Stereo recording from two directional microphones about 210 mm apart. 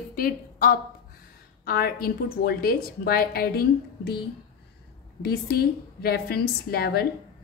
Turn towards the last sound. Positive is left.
turn(degrees=50)  # may be behind; listen again after turning